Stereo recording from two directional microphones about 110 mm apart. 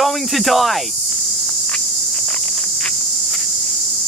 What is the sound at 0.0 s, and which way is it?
Speech, centre (ahead or behind).